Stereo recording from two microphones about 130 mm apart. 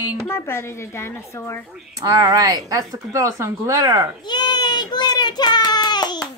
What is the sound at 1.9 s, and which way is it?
Speech, 25° right (ahead or behind).